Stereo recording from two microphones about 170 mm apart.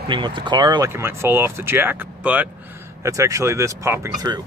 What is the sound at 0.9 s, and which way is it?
Speech, 15° right (ahead or behind).